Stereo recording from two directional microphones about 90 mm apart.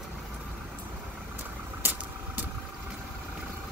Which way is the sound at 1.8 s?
25° right (ahead or behind).